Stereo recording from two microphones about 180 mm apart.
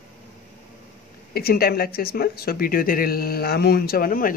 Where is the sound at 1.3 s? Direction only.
55° left (ahead or behind).